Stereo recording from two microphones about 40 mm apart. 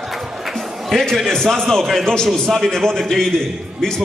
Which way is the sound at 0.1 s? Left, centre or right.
Centre.